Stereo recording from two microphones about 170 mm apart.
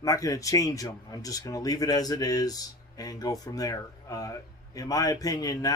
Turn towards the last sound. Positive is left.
turn(degrees=20)  # may be behind; listen again after turning